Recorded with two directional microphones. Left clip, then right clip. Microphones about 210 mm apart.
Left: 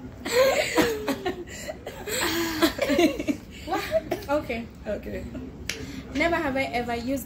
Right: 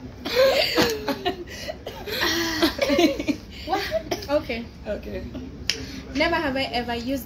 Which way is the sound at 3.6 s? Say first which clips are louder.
Right 1 dB; centre (ahead or behind).